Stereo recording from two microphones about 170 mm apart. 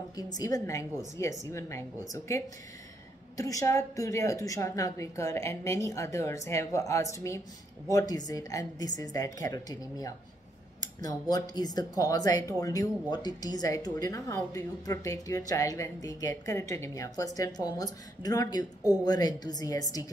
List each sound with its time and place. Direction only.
0.1 s a woman's voice: 20° left (ahead or behind)